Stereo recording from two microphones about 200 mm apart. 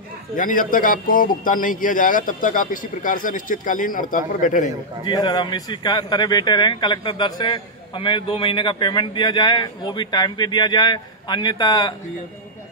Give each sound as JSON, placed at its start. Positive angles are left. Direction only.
{"t": 0.4, "sound": "a man's voice", "side_deg": 45}
{"t": 5.0, "sound": "speech", "side_deg": 20}